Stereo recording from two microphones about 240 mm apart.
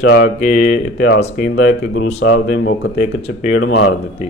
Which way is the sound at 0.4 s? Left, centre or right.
Left.